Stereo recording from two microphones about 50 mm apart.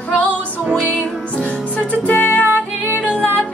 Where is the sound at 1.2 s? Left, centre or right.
Left.